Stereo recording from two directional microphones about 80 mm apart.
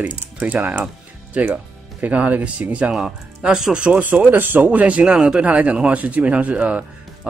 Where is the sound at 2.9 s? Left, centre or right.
Centre.